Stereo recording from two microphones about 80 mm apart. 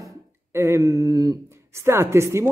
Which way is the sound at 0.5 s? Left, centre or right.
Right.